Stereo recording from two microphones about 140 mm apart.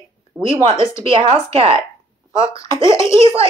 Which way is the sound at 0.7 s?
20° left (ahead or behind).